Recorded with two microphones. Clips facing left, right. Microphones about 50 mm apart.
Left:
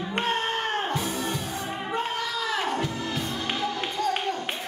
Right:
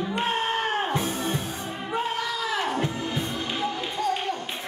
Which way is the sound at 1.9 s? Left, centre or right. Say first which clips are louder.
Right 3 dB; centre.